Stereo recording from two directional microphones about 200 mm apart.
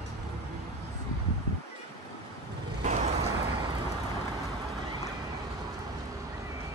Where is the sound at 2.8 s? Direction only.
35° right (ahead or behind).